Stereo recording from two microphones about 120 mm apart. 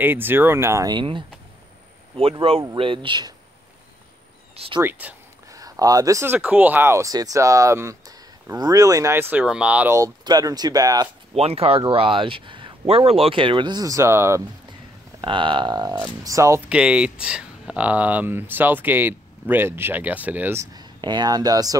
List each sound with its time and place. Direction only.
0.0 s speech: 15° right (ahead or behind)
0.8 s speech: 40° right (ahead or behind)
2.4 s speech: 50° right (ahead or behind)
4.6 s speech: 45° right (ahead or behind)
4.8 s speech: 15° right (ahead or behind)
5.5 s speech: 30° right (ahead or behind)
6.3 s speech: 15° right (ahead or behind)
9.8 s speech: 25° right (ahead or behind)
11.3 s speech: 55° right (ahead or behind); by 14.4 s 20° right (ahead or behind)
14.7 s speech: 40° right (ahead or behind); by 16.6 s 25° right (ahead or behind)
16.6 s speech: 10° right (ahead or behind)
20.7 s speech: 35° right (ahead or behind)